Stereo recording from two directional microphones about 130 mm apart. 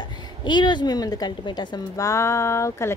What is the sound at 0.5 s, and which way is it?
A woman's voice, 35° left (ahead or behind).